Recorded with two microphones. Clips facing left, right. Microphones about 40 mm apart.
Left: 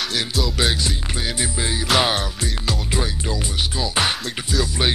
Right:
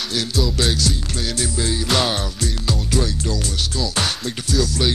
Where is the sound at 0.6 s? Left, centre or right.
Left.